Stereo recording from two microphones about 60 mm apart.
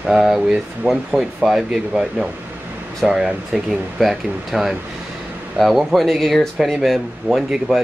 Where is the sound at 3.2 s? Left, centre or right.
Centre.